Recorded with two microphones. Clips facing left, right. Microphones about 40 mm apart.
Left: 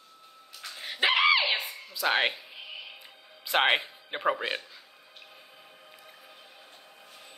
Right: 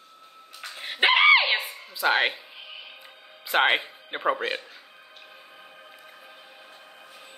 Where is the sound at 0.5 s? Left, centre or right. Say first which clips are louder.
Right 4 dB; right.